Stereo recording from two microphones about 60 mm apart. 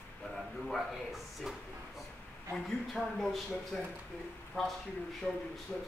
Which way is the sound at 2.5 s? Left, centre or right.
Centre.